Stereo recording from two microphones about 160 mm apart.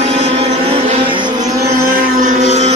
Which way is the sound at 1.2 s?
25° right (ahead or behind).